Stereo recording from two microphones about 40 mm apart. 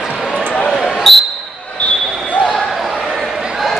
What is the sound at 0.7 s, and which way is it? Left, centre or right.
Basketball bounce, centre.